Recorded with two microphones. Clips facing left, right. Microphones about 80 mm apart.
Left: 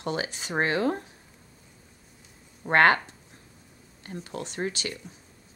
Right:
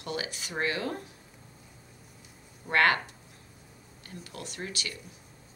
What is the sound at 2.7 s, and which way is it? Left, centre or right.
Speech, left.